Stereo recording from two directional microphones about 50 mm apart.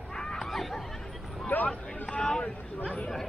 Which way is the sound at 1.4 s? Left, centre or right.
Left.